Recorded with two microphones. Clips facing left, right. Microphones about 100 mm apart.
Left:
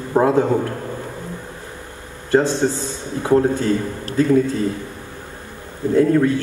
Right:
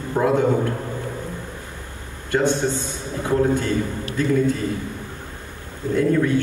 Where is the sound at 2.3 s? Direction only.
35° left (ahead or behind).